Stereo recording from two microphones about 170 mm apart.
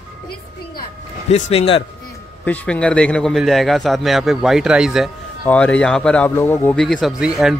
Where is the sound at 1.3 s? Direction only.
35° left (ahead or behind).